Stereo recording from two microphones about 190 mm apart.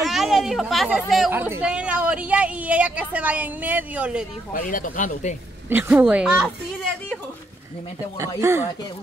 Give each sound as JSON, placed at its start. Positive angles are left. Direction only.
{"t": 0.0, "sound": "a woman's voice", "side_deg": 0}
{"t": 4.6, "sound": "speech", "side_deg": 45}
{"t": 5.7, "sound": "a woman's voice", "side_deg": -10}
{"t": 8.2, "sound": "a woman's voice", "side_deg": -15}